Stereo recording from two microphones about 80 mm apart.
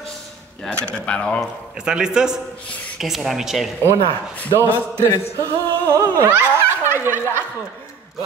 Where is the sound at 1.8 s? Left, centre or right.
Centre.